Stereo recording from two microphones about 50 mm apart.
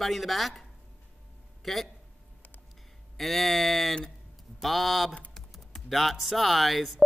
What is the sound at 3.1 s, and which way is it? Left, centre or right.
Speech, centre.